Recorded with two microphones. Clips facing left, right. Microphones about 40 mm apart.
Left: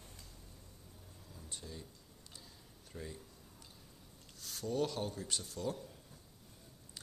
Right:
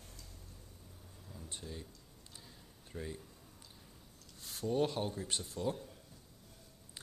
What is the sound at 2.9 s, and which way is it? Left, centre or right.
Speech, centre.